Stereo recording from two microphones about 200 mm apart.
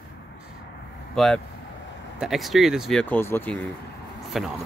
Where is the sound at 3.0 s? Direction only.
10° left (ahead or behind).